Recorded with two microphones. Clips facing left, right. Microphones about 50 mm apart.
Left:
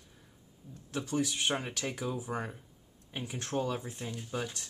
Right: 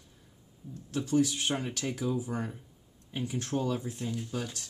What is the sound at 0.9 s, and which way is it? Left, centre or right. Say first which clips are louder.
Speech: right 5 dB; centre.